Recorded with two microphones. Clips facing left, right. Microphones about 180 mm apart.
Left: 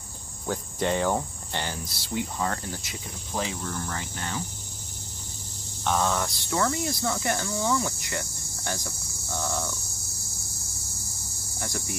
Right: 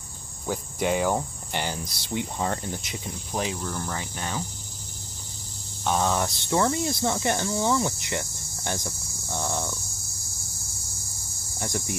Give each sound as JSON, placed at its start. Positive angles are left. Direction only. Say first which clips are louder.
{"t": 0.5, "sound": "cricket", "louder": "right 1 dB", "side_deg": -10}
{"t": 5.9, "sound": "speech", "louder": "right 1 dB", "side_deg": -20}
{"t": 11.6, "sound": "speech", "louder": "right 3 dB", "side_deg": -20}